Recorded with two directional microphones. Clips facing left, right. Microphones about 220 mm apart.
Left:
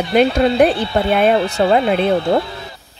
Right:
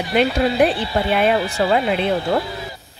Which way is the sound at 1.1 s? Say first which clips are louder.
Left 4 dB; 50° left (ahead or behind).